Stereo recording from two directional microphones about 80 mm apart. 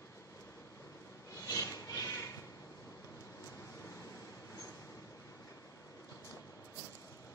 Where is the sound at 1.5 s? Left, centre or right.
Left.